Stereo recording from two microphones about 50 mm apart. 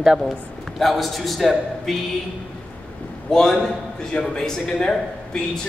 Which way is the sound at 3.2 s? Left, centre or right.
Centre.